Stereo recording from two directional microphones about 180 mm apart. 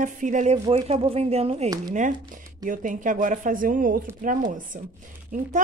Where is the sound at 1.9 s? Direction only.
45° right (ahead or behind).